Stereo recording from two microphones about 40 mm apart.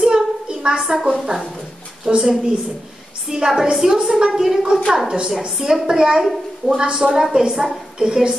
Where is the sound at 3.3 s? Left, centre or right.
Centre.